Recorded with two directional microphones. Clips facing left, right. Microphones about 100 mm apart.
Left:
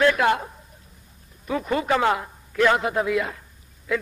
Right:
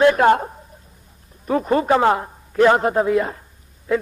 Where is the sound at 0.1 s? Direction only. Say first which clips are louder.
Right 6 dB; 40° right (ahead or behind).